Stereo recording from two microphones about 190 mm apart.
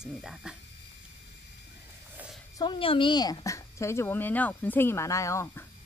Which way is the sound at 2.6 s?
25° left (ahead or behind).